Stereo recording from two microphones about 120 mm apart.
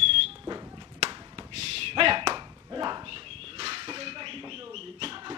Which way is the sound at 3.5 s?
45° right (ahead or behind).